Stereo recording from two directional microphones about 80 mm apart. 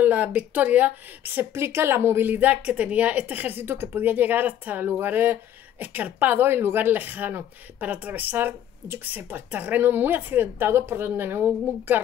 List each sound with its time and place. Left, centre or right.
0.0 s speech: right